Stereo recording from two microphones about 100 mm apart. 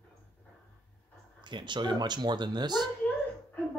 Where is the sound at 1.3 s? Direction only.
50° right (ahead or behind).